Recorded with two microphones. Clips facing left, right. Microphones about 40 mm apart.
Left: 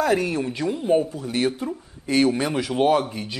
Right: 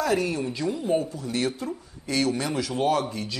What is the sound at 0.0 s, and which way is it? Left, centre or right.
Speech, left.